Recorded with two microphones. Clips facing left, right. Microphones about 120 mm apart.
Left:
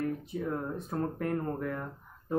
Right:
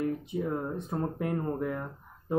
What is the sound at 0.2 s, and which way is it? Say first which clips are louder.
Speech: right 2 dB; 15° right (ahead or behind).